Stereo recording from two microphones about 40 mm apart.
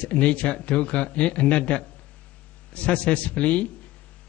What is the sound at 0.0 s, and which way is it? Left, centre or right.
A man's voice, left.